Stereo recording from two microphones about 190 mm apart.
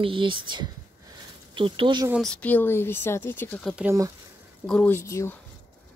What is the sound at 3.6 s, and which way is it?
Speech, 5° right (ahead or behind).